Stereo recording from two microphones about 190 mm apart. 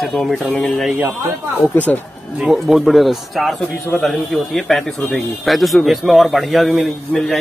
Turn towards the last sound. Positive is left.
turn(degrees=0)  # may be behind; listen again after turning